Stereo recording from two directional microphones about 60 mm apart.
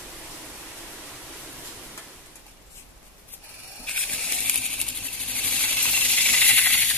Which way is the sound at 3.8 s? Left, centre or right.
Left.